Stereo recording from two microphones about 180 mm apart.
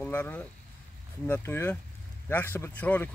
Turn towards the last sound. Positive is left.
turn(degrees=10)  # may be behind; listen again after turning